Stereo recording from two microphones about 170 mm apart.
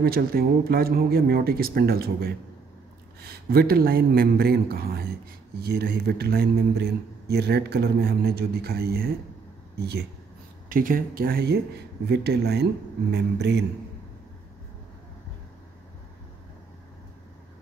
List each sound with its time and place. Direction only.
0.0 s speech: 65° right (ahead or behind)
10.7 s speech: 55° right (ahead or behind); by 13.7 s 80° right